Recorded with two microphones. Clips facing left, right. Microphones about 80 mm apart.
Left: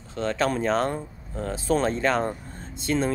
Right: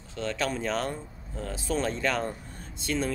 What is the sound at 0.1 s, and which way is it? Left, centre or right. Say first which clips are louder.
Speech: left 5 dB; left.